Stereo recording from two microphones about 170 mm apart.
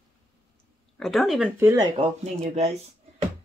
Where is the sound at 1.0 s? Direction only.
Centre (ahead or behind).